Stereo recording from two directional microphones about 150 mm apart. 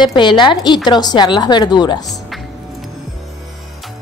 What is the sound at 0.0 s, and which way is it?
Speech, 30° left (ahead or behind).